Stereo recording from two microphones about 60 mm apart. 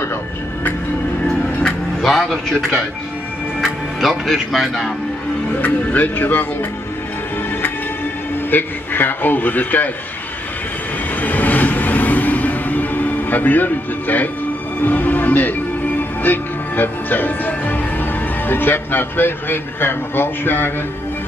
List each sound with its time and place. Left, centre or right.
1.2 s music: centre
2.0 s a man's voice: centre
3.6 s speech: centre
5.6 s speech: left
8.5 s a man's voice: left
11.1 s music: left
18.5 s a man's voice: left